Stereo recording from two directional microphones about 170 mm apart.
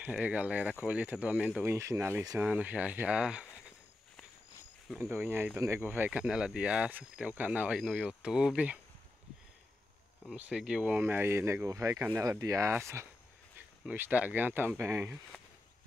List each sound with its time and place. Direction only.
0.0 s speech: 10° right (ahead or behind)
4.8 s speech: centre (ahead or behind)
5.1 s speech: 15° right (ahead or behind)
10.3 s speech: 5° right (ahead or behind)